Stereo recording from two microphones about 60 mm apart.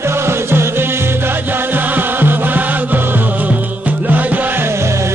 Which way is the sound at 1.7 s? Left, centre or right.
Right.